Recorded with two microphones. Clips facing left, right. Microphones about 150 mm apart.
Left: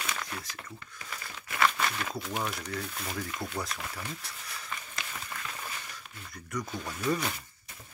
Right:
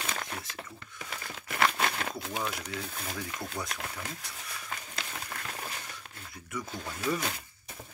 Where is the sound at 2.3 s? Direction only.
5° left (ahead or behind).